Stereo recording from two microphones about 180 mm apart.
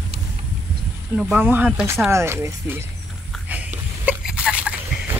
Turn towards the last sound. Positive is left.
turn(degrees=-5)  # may be behind; listen again after turning